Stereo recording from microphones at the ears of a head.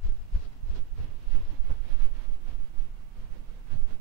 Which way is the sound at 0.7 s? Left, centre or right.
Right.